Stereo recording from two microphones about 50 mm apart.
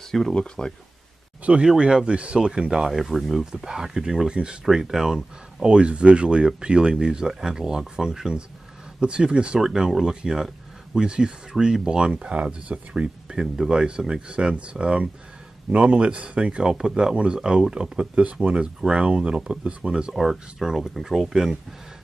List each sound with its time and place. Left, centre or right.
0.3 s speech: centre
1.4 s speech: right; by 3.4 s centre
3.6 s speech: centre
9.7 s speech: centre
20.2 s speech: centre